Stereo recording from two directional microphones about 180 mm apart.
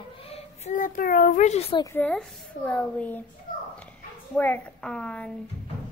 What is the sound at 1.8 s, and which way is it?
A woman's voice, 10° left (ahead or behind).